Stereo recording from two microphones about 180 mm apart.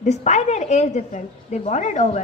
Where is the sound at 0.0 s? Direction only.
40° left (ahead or behind).